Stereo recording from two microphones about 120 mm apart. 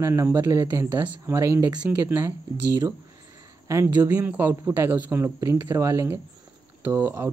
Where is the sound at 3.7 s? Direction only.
25° right (ahead or behind).